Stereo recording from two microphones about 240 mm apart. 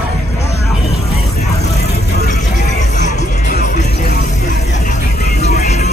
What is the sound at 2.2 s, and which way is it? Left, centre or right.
Vehicle, left.